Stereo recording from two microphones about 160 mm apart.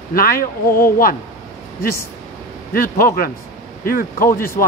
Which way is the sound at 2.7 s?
65° left (ahead or behind).